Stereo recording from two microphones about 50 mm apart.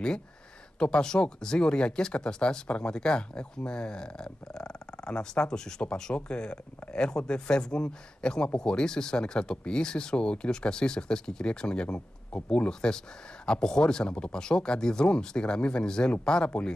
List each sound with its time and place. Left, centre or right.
0.7 s speech: centre